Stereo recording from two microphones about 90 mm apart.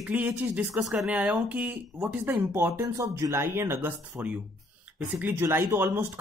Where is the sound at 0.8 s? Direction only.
5° right (ahead or behind).